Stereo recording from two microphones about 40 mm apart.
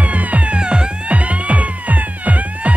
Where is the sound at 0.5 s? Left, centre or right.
Right.